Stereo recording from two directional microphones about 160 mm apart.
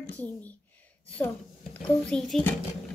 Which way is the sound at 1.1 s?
10° left (ahead or behind).